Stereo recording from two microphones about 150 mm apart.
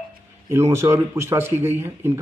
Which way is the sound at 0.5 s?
20° right (ahead or behind).